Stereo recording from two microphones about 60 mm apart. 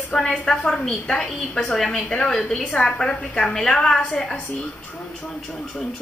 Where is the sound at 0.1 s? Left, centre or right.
Centre.